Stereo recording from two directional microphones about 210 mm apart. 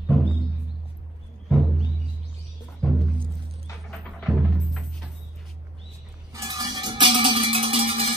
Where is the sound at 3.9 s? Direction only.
Centre (ahead or behind).